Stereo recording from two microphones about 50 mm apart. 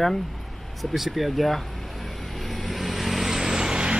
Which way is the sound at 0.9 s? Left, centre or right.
Centre.